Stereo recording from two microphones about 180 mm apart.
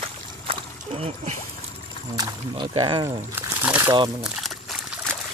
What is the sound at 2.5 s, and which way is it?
Speech, 35° right (ahead or behind).